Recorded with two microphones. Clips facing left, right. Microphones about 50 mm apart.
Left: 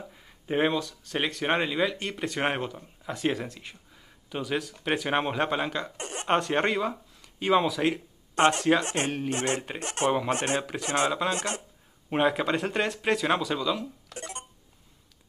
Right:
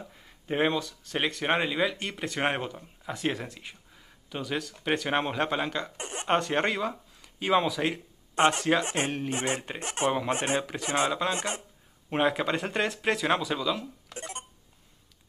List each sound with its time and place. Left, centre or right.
0.0 s speech: centre
5.9 s chuckle: centre
6.2 s speech: centre
8.8 s speech: centre
9.1 s speech: centre
10.0 s speech: centre
10.3 s speech: centre
10.6 s speech: centre
11.3 s speech: centre
12.1 s speech: centre
14.1 s a sound: centre